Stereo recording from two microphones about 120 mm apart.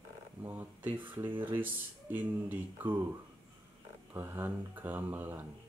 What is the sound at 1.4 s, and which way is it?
Speech, 15° right (ahead or behind).